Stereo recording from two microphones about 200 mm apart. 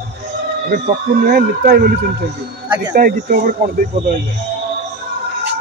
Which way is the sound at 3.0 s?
45° right (ahead or behind).